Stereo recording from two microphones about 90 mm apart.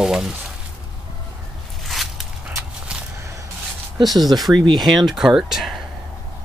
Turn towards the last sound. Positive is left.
turn(degrees=-5)  # may be behind; listen again after turning